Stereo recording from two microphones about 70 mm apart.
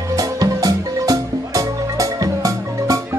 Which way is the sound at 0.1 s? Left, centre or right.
Right.